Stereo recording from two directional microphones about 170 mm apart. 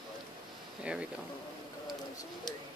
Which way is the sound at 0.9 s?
5° right (ahead or behind).